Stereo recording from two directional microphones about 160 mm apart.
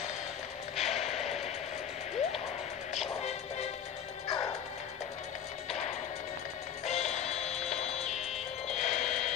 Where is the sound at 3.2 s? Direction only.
40° left (ahead or behind).